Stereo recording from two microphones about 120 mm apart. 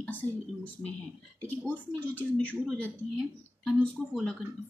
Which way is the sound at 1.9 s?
15° left (ahead or behind).